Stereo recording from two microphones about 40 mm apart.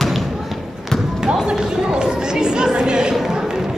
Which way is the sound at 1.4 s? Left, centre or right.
Centre.